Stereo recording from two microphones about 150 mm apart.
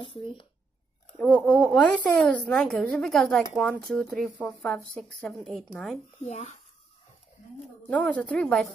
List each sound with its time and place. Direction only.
0.0 s speech: 35° left (ahead or behind)
1.1 s a woman's voice: 5° left (ahead or behind)
6.2 s speech: 50° left (ahead or behind)
7.9 s a woman's voice: 10° left (ahead or behind)